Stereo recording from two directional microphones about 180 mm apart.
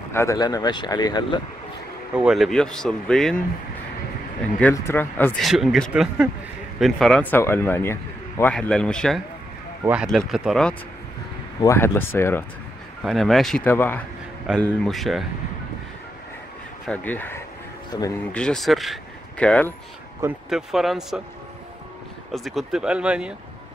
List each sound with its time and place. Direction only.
0.1 s speech: 15° left (ahead or behind)
2.1 s speech: centre (ahead or behind)
4.6 s speech: 10° left (ahead or behind)
5.4 s speech: centre (ahead or behind)
11.6 s speech: 15° left (ahead or behind)
13.0 s speech: centre (ahead or behind)
16.8 s speech: 10° left (ahead or behind)
17.9 s speech: 20° left (ahead or behind)
18.3 s speech: 5° left (ahead or behind)
22.3 s speech: centre (ahead or behind)